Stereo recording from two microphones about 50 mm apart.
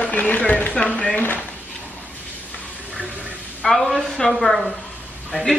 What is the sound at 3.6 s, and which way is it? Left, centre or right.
Speech, left.